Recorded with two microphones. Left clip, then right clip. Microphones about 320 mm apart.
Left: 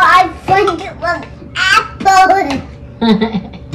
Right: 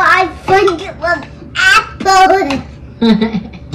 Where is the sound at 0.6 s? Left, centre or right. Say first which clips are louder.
Right 1 dB; centre.